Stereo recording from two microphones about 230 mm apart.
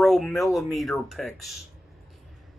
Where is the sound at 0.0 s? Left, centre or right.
Centre.